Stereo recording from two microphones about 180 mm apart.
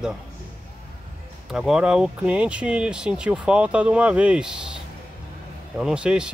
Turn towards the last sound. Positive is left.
turn(degrees=-5)  # may be behind; listen again after turning